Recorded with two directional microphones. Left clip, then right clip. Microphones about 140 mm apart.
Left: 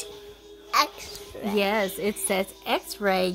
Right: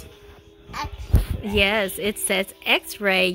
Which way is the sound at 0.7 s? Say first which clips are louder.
Left 9 dB; 45° left (ahead or behind).